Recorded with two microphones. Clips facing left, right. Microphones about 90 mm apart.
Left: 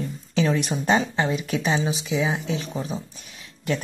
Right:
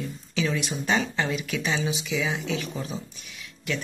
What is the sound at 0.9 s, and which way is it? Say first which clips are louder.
Speech: left 3 dB; 25° left (ahead or behind).